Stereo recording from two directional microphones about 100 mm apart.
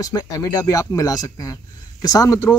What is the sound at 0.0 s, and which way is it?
Speech, 35° left (ahead or behind).